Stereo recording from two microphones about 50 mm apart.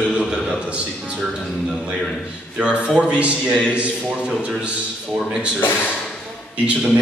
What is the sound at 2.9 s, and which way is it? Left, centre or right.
A man's voice, right.